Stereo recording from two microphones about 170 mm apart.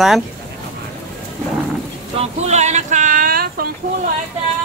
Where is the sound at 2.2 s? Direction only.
40° right (ahead or behind); by 3.7 s 60° right (ahead or behind).